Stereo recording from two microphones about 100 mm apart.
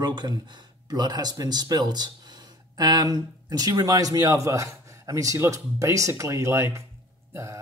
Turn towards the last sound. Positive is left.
turn(degrees=-30)  # may be behind; listen again after turning